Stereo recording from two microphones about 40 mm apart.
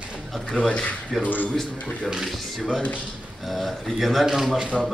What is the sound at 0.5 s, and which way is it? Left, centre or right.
Speech, left.